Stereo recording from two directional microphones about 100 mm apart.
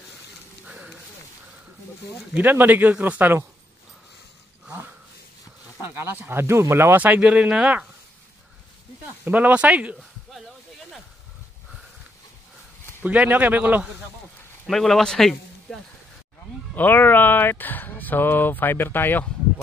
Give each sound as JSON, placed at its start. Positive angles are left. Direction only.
{"t": 0.7, "sound": "a sound", "side_deg": -10}
{"t": 2.3, "sound": "speech", "side_deg": -20}
{"t": 5.8, "sound": "speech", "side_deg": -25}
{"t": 9.2, "sound": "speech", "side_deg": -15}
{"t": 13.0, "sound": "speech", "side_deg": -15}
{"t": 14.7, "sound": "speech", "side_deg": 0}
{"t": 16.7, "sound": "speech", "side_deg": 20}